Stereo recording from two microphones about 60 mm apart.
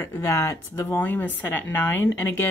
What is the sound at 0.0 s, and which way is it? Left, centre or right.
Speech, left.